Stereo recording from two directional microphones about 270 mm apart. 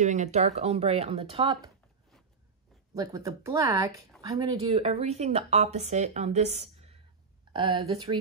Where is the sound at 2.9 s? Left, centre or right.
Centre.